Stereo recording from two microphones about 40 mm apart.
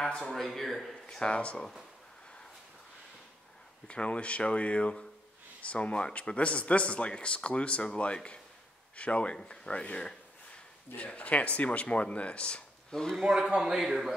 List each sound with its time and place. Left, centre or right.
0.0 s speech: centre
0.4 s a man's voice: centre
1.2 s speech: left
3.8 s speech: left
12.9 s speech: centre
13.2 s speech: centre
13.5 s a man's voice: right
13.7 s a man's voice: centre